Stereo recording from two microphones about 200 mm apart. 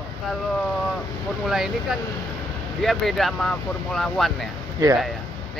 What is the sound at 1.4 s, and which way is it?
Speech, centre (ahead or behind).